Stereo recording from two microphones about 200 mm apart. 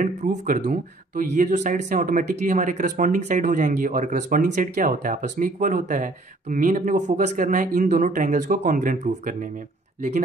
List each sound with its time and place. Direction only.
0.0 s speech: 40° right (ahead or behind)